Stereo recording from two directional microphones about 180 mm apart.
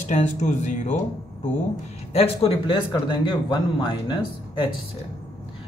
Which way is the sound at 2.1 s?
35° left (ahead or behind).